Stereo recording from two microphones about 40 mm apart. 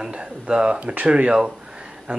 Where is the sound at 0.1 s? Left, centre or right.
Right.